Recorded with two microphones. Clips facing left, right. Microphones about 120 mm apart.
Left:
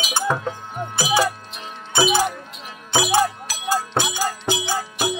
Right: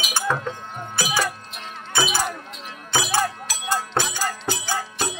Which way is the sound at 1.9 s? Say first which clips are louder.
Left 5 dB; 20° left (ahead or behind).